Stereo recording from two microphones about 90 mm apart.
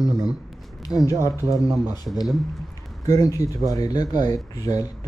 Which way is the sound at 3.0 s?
45° left (ahead or behind).